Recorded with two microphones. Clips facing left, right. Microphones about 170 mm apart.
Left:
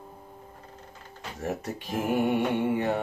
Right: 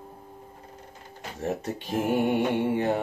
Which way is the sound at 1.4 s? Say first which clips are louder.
Right 2 dB; 30° right (ahead or behind).